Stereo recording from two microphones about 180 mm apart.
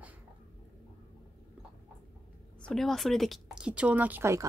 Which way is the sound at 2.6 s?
Centre (ahead or behind).